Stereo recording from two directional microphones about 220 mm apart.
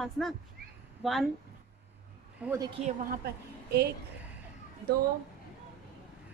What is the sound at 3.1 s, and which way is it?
Speech, 45° right (ahead or behind).